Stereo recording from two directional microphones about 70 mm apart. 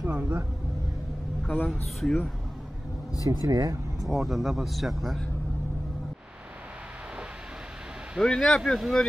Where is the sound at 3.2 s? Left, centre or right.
Right.